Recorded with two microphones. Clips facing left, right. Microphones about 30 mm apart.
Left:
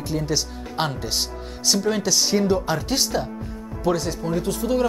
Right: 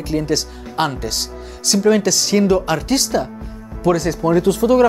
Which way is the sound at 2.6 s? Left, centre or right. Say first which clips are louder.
Right 5 dB; right.